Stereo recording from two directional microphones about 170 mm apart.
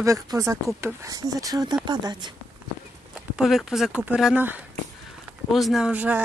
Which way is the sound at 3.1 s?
Centre (ahead or behind).